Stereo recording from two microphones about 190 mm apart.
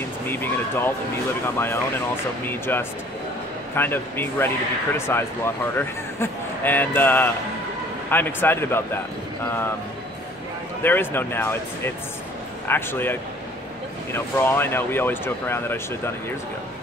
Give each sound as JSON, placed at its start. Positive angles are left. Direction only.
{"t": 0.3, "sound": "speech", "side_deg": 10}
{"t": 2.4, "sound": "speech", "side_deg": 10}
{"t": 10.8, "sound": "speech", "side_deg": 10}